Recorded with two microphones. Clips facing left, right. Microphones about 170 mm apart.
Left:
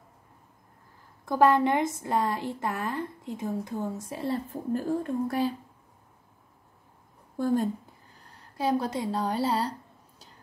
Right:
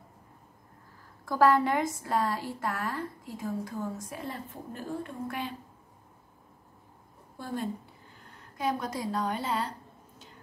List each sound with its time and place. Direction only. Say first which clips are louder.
1.2 s a woman's voice: left 2 dB; 20° left (ahead or behind)
4.1 s a woman's voice: left 8 dB; 35° left (ahead or behind)
7.3 s a woman's voice: left 10 dB; 45° left (ahead or behind)
8.2 s a sound: left 3 dB; 35° left (ahead or behind)